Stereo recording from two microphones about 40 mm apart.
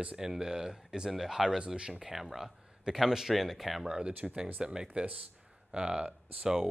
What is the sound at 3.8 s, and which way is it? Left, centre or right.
Speech, right.